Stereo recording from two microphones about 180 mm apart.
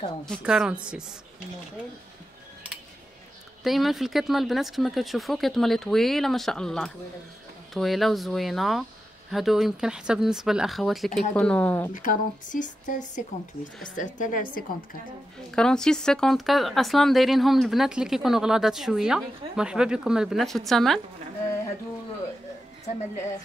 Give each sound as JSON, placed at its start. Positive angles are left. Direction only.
{"t": 0.2, "sound": "speech", "side_deg": 0}
{"t": 3.6, "sound": "speech", "side_deg": 0}
{"t": 11.9, "sound": "speech", "side_deg": 45}
{"t": 15.5, "sound": "speech", "side_deg": 5}